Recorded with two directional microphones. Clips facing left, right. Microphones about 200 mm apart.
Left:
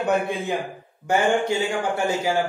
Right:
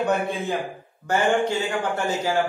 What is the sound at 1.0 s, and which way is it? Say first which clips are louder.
A man's voice: left 1 dB; 10° left (ahead or behind).